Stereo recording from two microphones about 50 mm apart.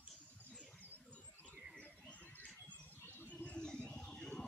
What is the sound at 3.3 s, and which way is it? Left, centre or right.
Bird, left.